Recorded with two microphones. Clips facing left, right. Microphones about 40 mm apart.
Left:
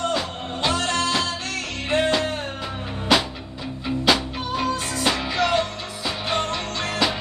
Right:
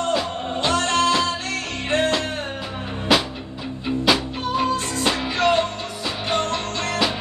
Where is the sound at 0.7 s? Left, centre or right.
Right.